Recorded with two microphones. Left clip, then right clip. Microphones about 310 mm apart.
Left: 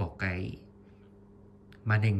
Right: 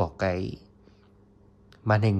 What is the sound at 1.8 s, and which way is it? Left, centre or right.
Speech, centre.